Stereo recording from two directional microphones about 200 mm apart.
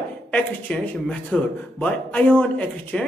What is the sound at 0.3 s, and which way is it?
Speech, 5° left (ahead or behind).